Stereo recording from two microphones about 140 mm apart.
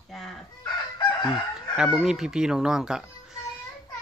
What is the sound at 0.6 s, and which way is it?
Chicken, 30° left (ahead or behind).